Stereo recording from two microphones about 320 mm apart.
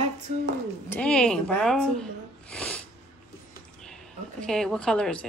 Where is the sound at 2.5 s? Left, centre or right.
Centre.